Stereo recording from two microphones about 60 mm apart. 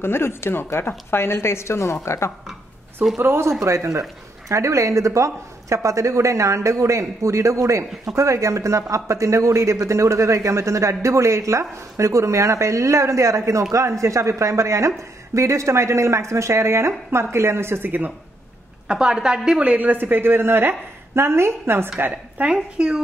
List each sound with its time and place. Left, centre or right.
0.0 s a woman's voice: left
3.2 s speech: right
3.6 s speech: right
17.8 s speech: right
18.9 s a woman's voice: centre
19.6 s a woman's voice: right
22.0 s a woman's voice: right
22.5 s a woman's voice: centre